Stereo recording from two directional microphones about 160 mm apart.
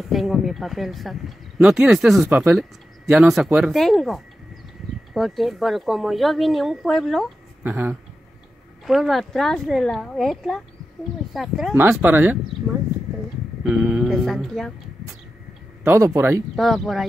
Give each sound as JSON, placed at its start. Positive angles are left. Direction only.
{"t": 0.1, "sound": "speech", "side_deg": 0}
{"t": 7.6, "sound": "speech", "side_deg": -10}
{"t": 11.7, "sound": "speech", "side_deg": -10}
{"t": 13.7, "sound": "speech", "side_deg": -5}
{"t": 15.8, "sound": "speech", "side_deg": -15}
{"t": 16.5, "sound": "speech", "side_deg": 0}